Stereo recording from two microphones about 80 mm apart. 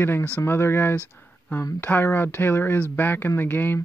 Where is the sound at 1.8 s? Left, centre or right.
Left.